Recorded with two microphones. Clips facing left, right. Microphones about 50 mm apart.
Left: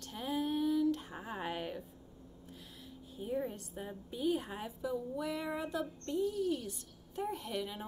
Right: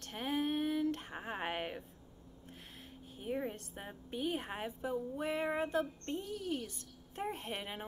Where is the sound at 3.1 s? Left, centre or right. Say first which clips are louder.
Left 1 dB; right.